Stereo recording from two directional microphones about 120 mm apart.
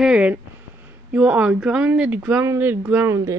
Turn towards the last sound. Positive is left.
turn(degrees=-25)  # may be behind; listen again after turning